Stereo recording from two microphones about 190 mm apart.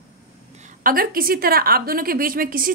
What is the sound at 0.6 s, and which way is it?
A woman's voice, 45° right (ahead or behind).